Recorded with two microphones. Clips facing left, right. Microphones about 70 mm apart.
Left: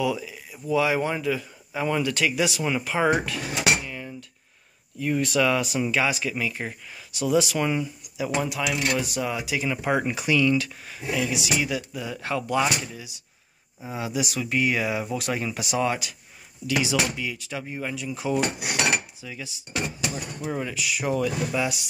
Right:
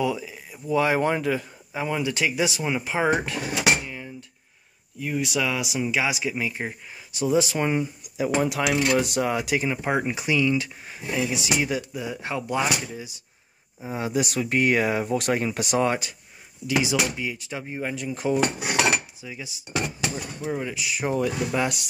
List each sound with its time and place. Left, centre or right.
0.0 s speech: right
1.7 s speech: centre; by 3.4 s right
3.8 s a sound: centre
5.0 s speech: centre; by 9.0 s right
9.0 s speech: right
9.6 s speech: right
16.6 s speech: right
20.7 s speech: right
21.5 s speech: right